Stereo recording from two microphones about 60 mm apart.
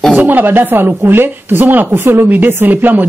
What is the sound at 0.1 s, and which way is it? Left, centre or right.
Speech, right.